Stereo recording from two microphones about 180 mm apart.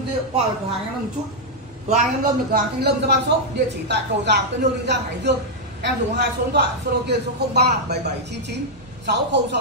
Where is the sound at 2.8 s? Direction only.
70° right (ahead or behind).